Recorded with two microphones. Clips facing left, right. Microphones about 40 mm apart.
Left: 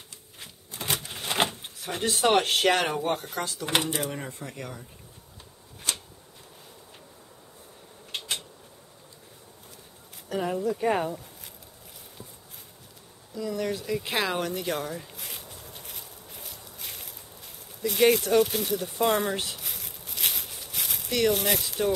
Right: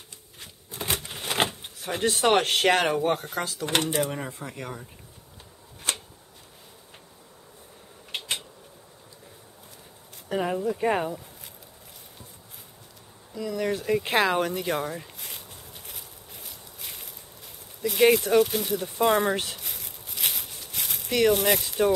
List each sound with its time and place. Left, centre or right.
0.4 s typewriter: centre
0.8 s a sound: centre
1.1 s speech: centre
3.9 s speech: centre
5.9 s a sound: right
8.1 s a sound: centre
10.3 s speech: right
13.7 s speech: right
13.9 s speech: centre
14.5 s insect: centre
17.8 s speech: centre
19.5 s a sound: centre
21.3 s speech: centre